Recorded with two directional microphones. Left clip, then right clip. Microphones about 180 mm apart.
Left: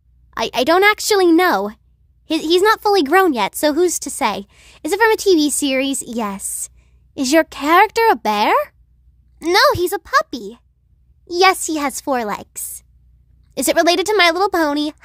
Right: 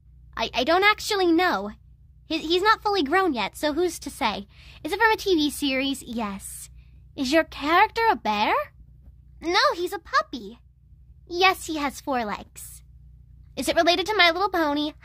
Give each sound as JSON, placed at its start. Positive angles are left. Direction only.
{"t": 0.3, "sound": "a woman's voice", "side_deg": 45}